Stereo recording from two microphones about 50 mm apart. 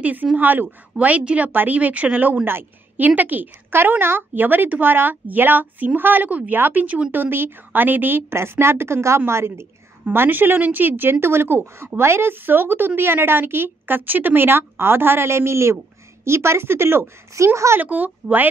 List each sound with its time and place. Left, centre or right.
0.0 s a woman's voice: right
0.9 s a woman's voice: right
8.4 s speech: right
10.0 s a woman's voice: right
17.4 s speech: right
17.8 s speech: right